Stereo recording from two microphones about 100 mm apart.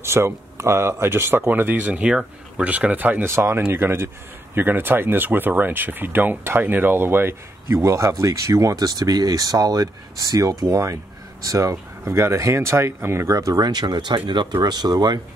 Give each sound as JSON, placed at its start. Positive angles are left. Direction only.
{"t": 0.0, "sound": "speech", "side_deg": -25}